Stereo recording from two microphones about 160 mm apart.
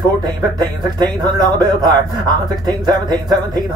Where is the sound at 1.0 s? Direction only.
25° right (ahead or behind).